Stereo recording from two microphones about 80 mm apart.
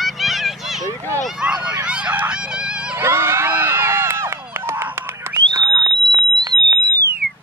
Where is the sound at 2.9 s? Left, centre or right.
Right.